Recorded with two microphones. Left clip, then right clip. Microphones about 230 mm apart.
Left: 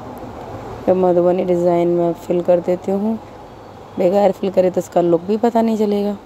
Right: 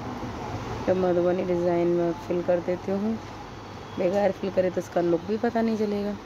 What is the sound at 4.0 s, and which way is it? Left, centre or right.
A woman's voice, left.